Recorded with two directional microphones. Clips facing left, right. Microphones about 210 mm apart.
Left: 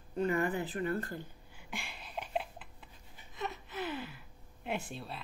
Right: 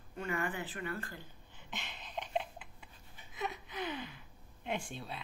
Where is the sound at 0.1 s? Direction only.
35° left (ahead or behind).